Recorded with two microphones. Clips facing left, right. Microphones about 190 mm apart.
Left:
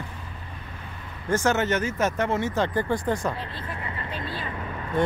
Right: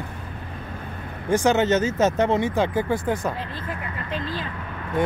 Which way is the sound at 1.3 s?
15° right (ahead or behind).